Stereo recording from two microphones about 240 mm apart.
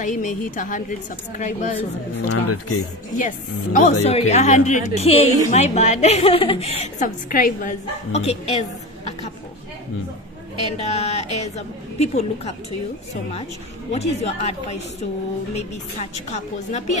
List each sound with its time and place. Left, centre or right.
0.0 s a woman's voice: left
2.2 s speech: left
3.2 s a woman's voice: left
10.8 s a woman's voice: left
13.9 s a woman's voice: left